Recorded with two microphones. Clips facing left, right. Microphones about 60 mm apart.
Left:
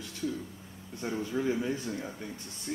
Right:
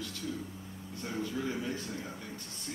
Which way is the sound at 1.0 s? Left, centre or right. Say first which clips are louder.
Left 4 dB; left.